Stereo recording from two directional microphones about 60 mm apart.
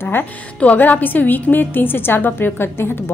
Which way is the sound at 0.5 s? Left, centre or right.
Left.